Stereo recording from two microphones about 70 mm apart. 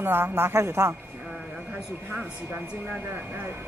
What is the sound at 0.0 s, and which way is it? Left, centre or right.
Speech, right.